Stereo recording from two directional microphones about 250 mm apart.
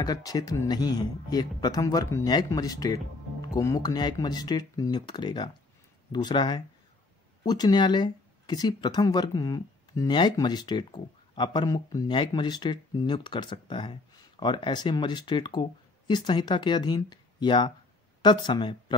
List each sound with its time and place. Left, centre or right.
0.0 s speech: centre